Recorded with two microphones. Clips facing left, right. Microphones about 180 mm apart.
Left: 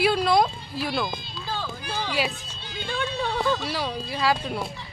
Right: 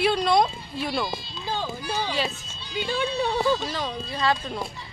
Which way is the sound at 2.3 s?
50° left (ahead or behind).